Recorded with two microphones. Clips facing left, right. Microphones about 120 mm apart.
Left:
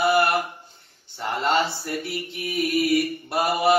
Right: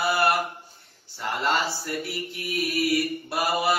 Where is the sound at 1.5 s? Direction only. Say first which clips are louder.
Left 4 dB; 60° left (ahead or behind).